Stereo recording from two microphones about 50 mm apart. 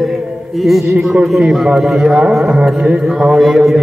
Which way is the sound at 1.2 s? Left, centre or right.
Centre.